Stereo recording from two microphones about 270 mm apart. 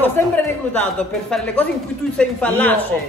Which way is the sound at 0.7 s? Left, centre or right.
Centre.